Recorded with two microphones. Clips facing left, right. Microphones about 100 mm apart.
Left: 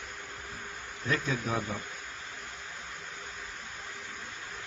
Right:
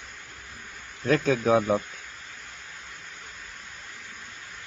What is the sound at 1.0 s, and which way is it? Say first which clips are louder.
Speech: right 9 dB; 75° right (ahead or behind).